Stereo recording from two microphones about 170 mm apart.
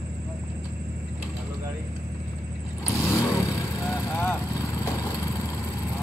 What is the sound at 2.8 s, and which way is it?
Vehicle, 15° left (ahead or behind).